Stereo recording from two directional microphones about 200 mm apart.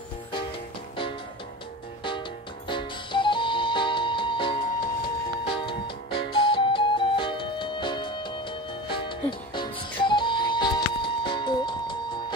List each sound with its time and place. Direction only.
2.7 s music: 25° left (ahead or behind)